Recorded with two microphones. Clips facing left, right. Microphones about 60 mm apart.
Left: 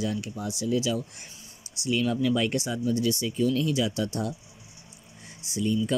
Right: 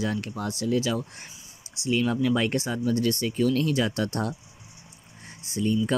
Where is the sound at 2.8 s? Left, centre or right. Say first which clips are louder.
Right 1 dB; right.